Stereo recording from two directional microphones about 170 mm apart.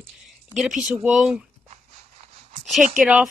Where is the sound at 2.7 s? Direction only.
Centre (ahead or behind).